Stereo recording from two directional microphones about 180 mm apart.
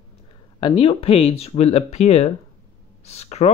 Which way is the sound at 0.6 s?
30° left (ahead or behind).